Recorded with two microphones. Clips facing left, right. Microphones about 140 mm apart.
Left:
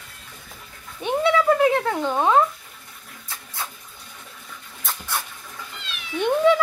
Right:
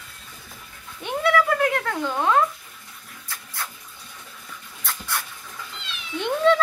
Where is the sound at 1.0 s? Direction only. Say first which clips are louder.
Left 2 dB; 20° left (ahead or behind).